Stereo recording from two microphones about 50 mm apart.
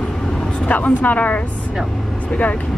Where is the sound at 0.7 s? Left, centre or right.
Left.